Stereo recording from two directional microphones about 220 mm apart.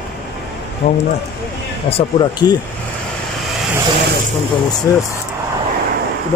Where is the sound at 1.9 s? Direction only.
20° left (ahead or behind).